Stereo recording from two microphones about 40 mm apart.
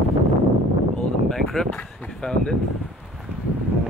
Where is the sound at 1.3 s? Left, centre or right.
Centre.